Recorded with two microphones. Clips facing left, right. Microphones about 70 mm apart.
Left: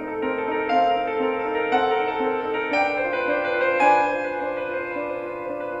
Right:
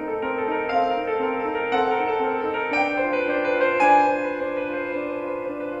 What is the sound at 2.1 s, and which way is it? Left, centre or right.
Music, right.